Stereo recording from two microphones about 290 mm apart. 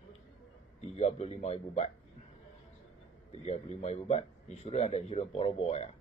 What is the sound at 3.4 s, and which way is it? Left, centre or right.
Speech, left.